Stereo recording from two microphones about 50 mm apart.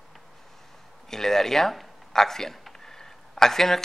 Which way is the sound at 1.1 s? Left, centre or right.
Centre.